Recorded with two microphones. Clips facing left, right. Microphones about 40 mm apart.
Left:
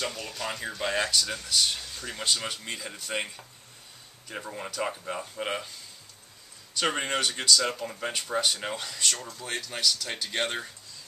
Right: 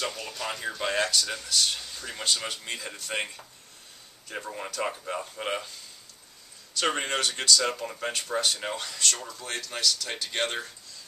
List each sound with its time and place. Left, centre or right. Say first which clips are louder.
0.0 s speech: even; centre
6.8 s speech: even; centre